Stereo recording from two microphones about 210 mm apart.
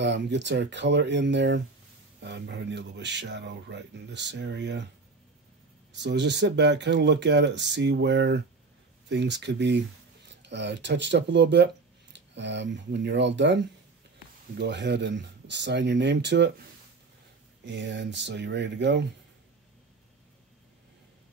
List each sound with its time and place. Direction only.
0.0 s speech: 55° right (ahead or behind)
5.9 s speech: 55° right (ahead or behind)
14.6 s speech: 55° right (ahead or behind)
17.6 s speech: 55° right (ahead or behind)